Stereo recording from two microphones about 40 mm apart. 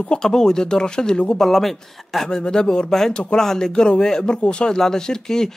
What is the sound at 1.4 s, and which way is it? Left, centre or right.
Speech, centre.